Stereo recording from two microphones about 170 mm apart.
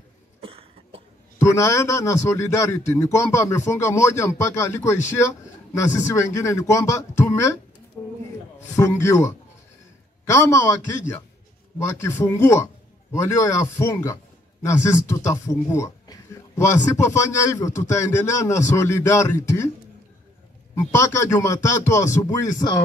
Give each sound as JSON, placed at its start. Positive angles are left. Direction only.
{"t": 0.4, "sound": "cough", "side_deg": -35}
{"t": 1.4, "sound": "a man's voice", "side_deg": 15}
{"t": 8.0, "sound": "a sound", "side_deg": 15}
{"t": 8.6, "sound": "a man's voice", "side_deg": 20}
{"t": 11.8, "sound": "a man's voice", "side_deg": 15}
{"t": 20.9, "sound": "a man's voice", "side_deg": 15}